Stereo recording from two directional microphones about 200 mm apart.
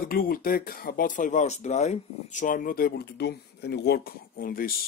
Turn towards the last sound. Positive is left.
turn(degrees=45)  # may be behind; listen again after turning